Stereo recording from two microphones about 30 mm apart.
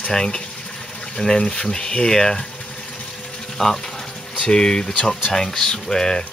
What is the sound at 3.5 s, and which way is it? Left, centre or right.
Speech, centre.